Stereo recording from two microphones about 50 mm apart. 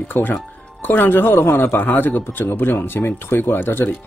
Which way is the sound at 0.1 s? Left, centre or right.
Left.